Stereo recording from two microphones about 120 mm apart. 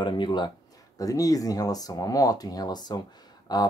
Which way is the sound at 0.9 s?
30° left (ahead or behind).